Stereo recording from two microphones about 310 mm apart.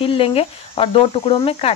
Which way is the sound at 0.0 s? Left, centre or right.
Centre.